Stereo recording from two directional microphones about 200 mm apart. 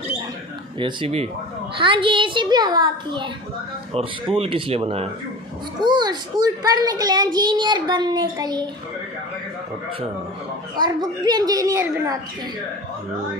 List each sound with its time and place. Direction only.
0.7 s a child's voice: 25° right (ahead or behind)
5.9 s a child's voice: 20° right (ahead or behind)
10.8 s a child's voice: 20° right (ahead or behind)